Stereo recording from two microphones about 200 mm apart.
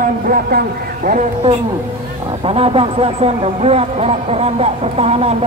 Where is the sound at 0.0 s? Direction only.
45° right (ahead or behind).